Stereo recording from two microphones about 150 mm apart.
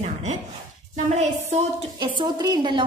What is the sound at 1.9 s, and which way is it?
Speech, 30° right (ahead or behind).